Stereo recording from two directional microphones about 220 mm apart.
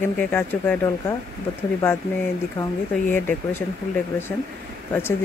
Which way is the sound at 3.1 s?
10° left (ahead or behind).